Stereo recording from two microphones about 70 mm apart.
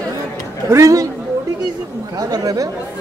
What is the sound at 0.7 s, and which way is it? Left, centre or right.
Speech, right.